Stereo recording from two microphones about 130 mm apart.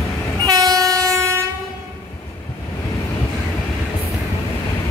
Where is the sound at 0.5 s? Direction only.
30° right (ahead or behind).